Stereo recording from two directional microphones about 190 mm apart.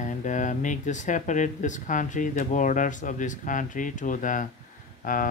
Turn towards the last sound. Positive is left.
turn(degrees=45)  # may be behind; listen again after turning